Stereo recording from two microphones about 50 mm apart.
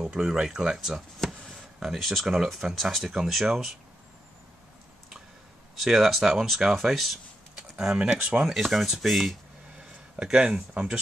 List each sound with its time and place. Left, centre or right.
0.0 s speech: centre
1.2 s a sound: centre
2.0 s speech: centre
5.9 s speech: centre
7.8 s speech: centre
8.5 s speech: centre
9.8 s speech: centre